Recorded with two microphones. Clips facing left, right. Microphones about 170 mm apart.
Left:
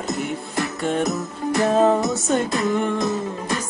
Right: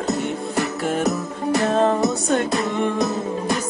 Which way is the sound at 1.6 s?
5° left (ahead or behind).